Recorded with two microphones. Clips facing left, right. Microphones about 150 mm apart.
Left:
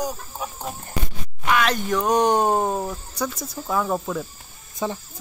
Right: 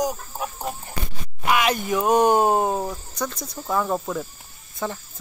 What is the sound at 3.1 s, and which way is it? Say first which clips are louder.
Speech: left 1 dB; 5° left (ahead or behind).